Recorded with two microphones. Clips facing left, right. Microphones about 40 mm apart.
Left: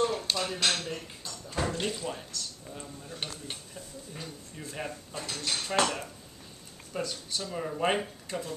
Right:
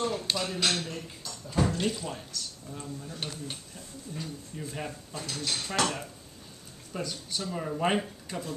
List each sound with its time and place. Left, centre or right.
0.0 s a sound: centre
0.4 s speech: centre
0.8 s speech: centre
1.5 s speech: centre